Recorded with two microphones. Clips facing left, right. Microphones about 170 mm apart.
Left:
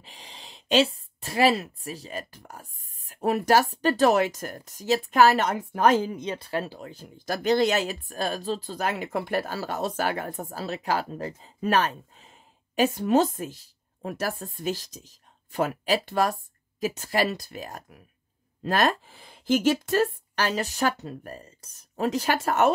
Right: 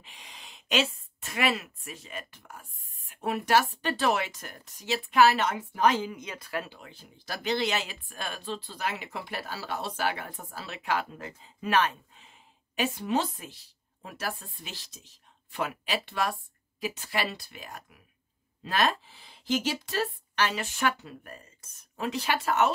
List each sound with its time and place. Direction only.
0.0 s a woman's voice: 35° left (ahead or behind)